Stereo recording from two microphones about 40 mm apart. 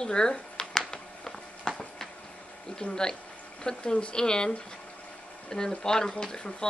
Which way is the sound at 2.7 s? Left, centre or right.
Centre.